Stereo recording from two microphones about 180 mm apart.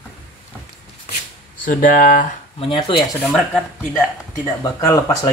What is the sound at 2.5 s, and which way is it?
Speech, 30° left (ahead or behind).